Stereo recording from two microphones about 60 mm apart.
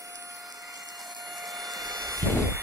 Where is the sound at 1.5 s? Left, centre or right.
Right.